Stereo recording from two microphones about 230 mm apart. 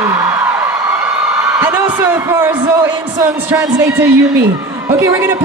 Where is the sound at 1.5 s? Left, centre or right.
Centre.